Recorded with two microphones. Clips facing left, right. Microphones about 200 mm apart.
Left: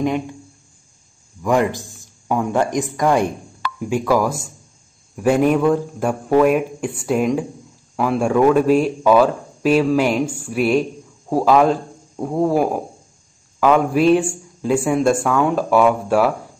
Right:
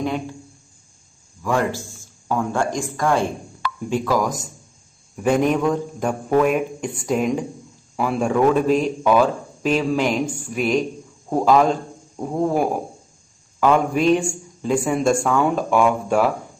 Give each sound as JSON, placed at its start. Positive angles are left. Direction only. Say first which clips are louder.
{"t": 1.7, "sound": "a man's voice", "louder": "right 1 dB", "side_deg": 20}